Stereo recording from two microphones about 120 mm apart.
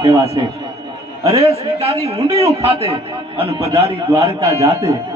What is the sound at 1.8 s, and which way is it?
A man's voice, 55° right (ahead or behind).